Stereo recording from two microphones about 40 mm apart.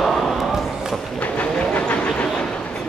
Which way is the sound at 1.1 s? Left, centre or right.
Left.